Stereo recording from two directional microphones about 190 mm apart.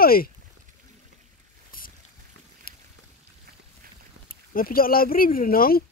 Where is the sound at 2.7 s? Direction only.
50° left (ahead or behind).